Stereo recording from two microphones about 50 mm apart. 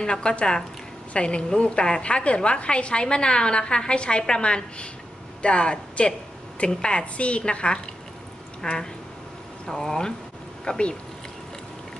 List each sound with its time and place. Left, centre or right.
0.0 s a woman's voice: centre